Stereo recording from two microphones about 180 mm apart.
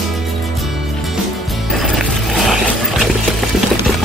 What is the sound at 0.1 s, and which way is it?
Music, centre (ahead or behind).